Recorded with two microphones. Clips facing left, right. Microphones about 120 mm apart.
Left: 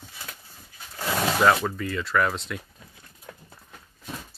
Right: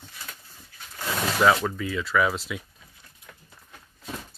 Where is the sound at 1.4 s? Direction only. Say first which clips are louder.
Right 1 dB; centre (ahead or behind).